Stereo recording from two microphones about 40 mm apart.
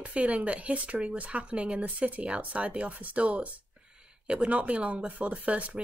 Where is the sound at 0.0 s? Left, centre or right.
Right.